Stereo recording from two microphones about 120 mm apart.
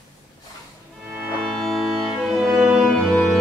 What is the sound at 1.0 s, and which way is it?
Music, 5° right (ahead or behind).